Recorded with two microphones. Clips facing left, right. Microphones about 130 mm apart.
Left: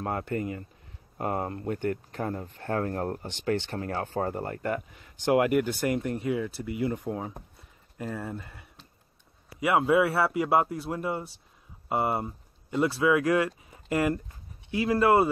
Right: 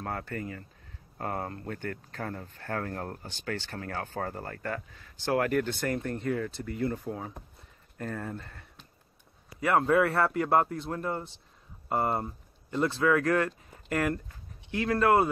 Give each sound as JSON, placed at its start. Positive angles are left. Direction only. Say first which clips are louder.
{"t": 0.0, "sound": "a man's voice", "louder": "left 5 dB", "side_deg": 25}
{"t": 8.0, "sound": "a man's voice", "louder": "left 1 dB", "side_deg": 10}